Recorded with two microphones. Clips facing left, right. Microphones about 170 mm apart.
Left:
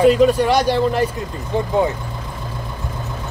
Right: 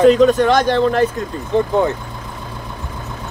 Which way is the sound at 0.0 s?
10° left (ahead or behind).